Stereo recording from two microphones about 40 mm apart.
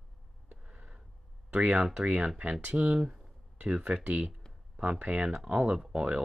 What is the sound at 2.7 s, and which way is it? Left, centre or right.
Speech, centre.